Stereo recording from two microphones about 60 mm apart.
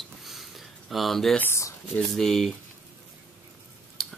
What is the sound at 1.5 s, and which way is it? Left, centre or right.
Speech, left.